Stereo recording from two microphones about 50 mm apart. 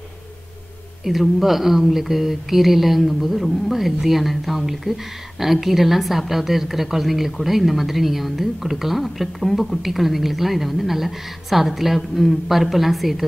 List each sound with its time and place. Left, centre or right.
1.0 s a woman's voice: centre